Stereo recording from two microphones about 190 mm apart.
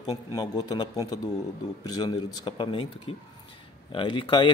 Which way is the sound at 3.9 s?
25° left (ahead or behind).